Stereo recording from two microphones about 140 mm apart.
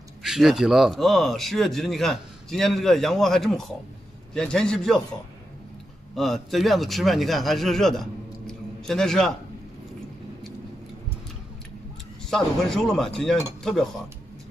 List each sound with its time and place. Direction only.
0.2 s speech: centre (ahead or behind)
6.1 s speech: centre (ahead or behind)
12.3 s speech: 5° left (ahead or behind)